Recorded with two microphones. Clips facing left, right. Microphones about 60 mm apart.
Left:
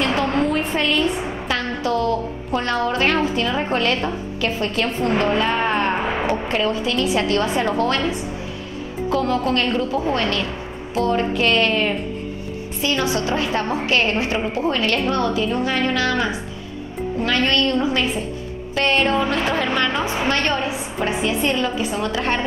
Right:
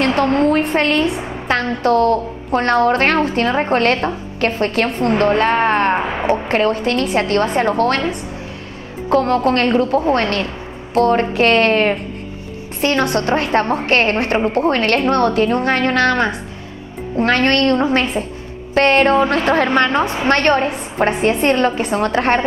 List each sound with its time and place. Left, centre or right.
0.4 s a woman's voice: right
1.0 s a woman's voice: centre
1.5 s a woman's voice: right
9.1 s a woman's voice: right